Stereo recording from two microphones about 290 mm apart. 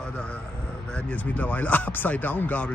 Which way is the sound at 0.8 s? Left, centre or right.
Centre.